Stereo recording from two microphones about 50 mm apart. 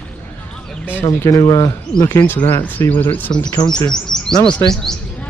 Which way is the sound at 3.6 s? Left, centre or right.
Centre.